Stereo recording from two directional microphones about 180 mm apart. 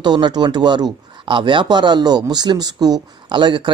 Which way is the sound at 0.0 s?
25° right (ahead or behind).